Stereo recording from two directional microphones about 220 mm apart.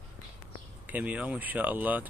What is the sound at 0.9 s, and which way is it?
Speech, 5° right (ahead or behind).